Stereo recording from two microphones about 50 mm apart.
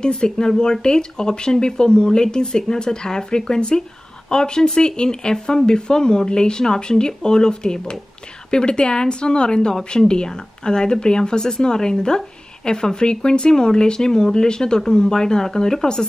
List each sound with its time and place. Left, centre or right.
0.0 s speech: centre